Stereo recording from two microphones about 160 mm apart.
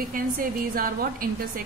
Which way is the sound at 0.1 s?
65° right (ahead or behind).